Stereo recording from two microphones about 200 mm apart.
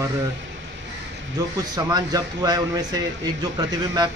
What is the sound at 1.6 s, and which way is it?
A man's voice, 20° right (ahead or behind).